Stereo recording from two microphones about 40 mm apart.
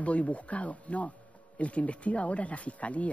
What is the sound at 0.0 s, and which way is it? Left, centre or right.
Speech, left.